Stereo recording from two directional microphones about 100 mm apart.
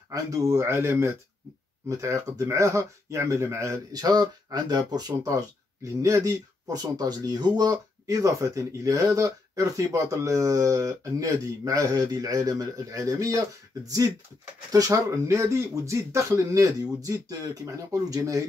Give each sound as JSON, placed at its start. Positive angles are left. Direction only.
{"t": 0.1, "sound": "speech", "side_deg": -35}